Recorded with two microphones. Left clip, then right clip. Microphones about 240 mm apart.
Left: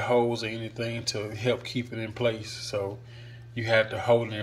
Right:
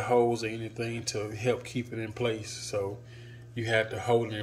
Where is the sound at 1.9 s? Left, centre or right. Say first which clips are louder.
Left 2 dB; left.